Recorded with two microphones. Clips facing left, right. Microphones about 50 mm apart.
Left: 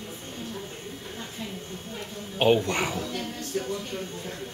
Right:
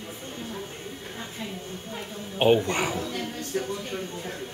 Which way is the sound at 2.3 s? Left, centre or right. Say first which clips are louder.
Right 1 dB; centre.